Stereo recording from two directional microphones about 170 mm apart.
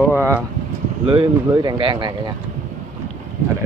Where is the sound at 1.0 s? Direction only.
30° right (ahead or behind).